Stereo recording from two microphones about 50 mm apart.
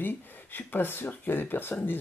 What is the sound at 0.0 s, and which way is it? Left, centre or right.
Speech, left.